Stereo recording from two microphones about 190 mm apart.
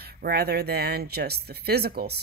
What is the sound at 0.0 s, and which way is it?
Speech, 55° right (ahead or behind).